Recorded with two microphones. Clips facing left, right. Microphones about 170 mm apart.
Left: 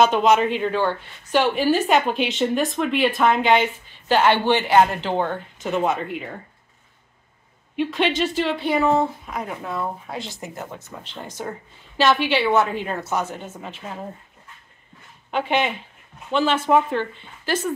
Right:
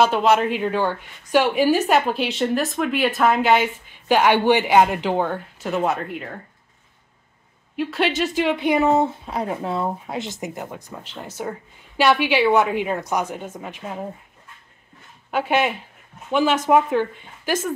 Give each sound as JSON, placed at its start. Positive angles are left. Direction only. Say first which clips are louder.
{"t": 0.0, "sound": "speech", "louder": "left 1 dB", "side_deg": -5}
{"t": 7.7, "sound": "speech", "louder": "even", "side_deg": -5}
{"t": 15.3, "sound": "speech", "louder": "right 1 dB", "side_deg": -5}